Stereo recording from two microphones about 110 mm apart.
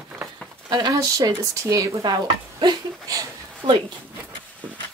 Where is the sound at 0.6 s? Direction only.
35° right (ahead or behind).